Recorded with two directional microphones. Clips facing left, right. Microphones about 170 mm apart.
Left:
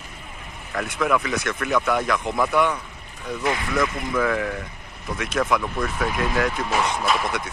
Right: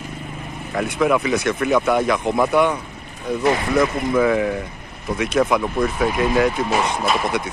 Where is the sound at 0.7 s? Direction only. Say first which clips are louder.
Right 4 dB; 20° right (ahead or behind).